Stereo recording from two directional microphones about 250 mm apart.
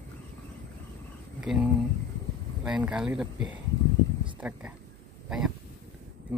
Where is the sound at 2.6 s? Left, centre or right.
Centre.